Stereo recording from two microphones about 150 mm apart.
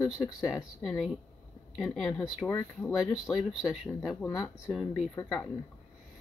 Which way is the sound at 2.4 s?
15° left (ahead or behind).